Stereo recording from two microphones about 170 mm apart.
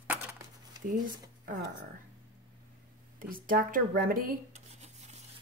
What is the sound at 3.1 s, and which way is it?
Speech, 55° right (ahead or behind).